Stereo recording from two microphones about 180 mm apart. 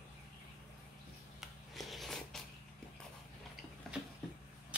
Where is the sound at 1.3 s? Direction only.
Centre (ahead or behind).